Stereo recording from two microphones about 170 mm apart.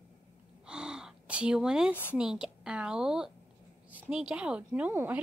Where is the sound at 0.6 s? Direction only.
5° right (ahead or behind).